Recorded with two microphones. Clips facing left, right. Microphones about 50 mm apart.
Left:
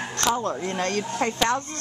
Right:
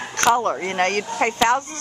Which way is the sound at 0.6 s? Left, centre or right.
Right.